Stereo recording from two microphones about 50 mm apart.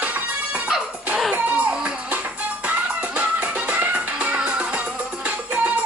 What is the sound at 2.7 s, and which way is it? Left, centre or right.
Music, right.